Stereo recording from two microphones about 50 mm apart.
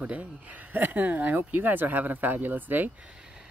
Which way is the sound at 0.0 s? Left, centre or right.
Right.